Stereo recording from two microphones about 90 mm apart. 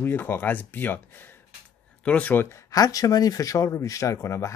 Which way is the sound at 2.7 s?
40° left (ahead or behind).